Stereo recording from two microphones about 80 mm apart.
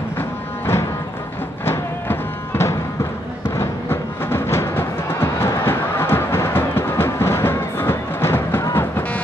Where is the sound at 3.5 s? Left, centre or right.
Left.